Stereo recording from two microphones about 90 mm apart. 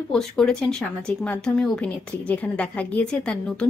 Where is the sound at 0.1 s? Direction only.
5° left (ahead or behind).